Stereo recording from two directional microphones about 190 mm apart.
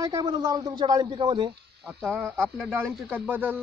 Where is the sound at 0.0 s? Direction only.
20° right (ahead or behind).